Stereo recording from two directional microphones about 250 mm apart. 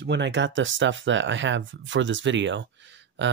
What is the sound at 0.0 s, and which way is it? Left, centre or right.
Speech, right.